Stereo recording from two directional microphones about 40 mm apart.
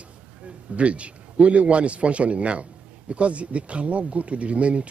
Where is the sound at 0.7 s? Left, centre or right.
Right.